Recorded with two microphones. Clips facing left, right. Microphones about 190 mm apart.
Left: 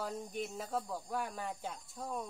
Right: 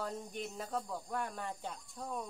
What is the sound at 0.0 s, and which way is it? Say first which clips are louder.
Speech: left 1 dB; centre (ahead or behind).